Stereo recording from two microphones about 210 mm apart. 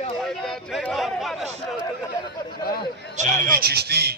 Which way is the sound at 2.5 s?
45° left (ahead or behind).